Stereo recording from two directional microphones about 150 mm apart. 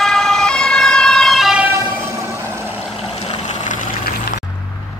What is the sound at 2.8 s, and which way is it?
Boat, centre (ahead or behind).